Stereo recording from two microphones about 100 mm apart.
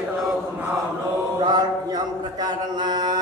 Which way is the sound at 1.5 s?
40° right (ahead or behind).